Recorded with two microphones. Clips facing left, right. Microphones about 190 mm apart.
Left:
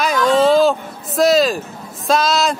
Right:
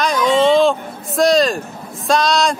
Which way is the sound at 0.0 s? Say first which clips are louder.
Even; 5° left (ahead or behind).